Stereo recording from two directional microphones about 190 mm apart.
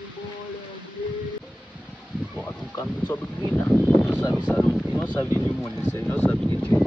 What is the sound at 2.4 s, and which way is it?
Speech, 15° left (ahead or behind).